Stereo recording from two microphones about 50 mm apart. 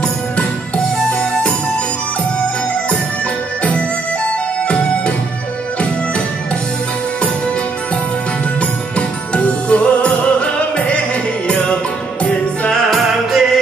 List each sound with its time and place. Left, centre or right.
4.6 s music: left
8.5 s music: left
12.9 s music: centre